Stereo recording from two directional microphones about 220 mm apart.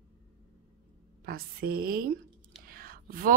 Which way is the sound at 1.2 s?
45° right (ahead or behind).